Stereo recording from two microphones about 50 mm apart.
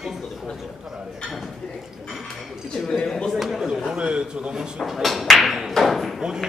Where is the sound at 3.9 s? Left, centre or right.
Centre.